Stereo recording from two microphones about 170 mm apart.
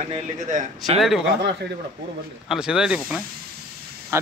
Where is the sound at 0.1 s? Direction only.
45° right (ahead or behind).